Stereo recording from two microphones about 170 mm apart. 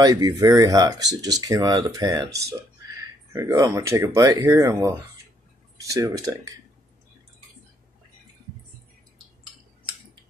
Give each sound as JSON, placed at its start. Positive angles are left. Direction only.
{"t": 0.0, "sound": "speech", "side_deg": -20}